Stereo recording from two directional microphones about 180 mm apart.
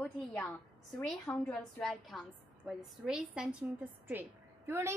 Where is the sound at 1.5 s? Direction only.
Centre (ahead or behind).